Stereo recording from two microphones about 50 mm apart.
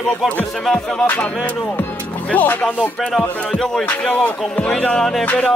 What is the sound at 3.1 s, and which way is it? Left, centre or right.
Speech, centre.